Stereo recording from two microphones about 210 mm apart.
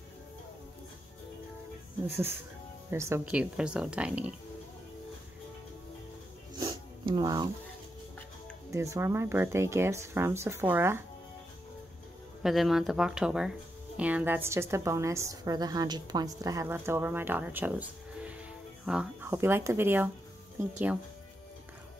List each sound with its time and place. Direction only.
2.0 s a woman's voice: 10° right (ahead or behind)
6.6 s a sound: 20° right (ahead or behind)
8.7 s a woman's voice: 15° right (ahead or behind)
12.4 s a woman's voice: centre (ahead or behind)